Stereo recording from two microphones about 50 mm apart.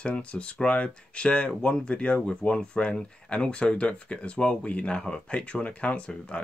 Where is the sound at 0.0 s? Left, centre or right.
Left.